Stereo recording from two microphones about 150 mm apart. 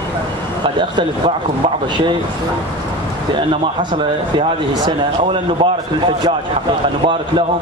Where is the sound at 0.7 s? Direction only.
35° right (ahead or behind).